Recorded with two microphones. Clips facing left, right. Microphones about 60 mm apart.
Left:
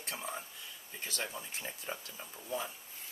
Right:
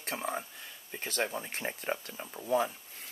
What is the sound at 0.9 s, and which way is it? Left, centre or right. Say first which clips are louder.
Speech: right 7 dB; right.